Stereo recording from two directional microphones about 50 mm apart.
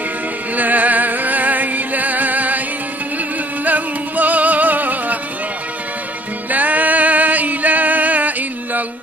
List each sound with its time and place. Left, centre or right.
0.6 s music: right
3.6 s music: right
6.5 s music: right